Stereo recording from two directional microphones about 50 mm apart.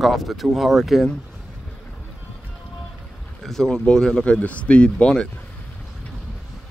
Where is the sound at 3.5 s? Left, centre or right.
Centre.